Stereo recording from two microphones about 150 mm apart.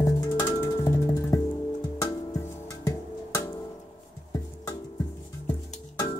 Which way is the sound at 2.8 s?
20° left (ahead or behind).